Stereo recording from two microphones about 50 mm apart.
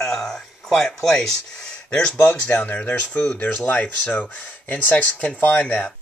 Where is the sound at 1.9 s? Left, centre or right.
Centre.